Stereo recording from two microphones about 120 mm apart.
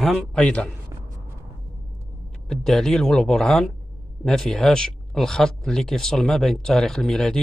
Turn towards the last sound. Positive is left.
turn(degrees=5)  # may be behind; listen again after turning